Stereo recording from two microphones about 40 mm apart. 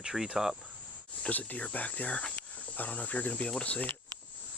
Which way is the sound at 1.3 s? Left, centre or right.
Left.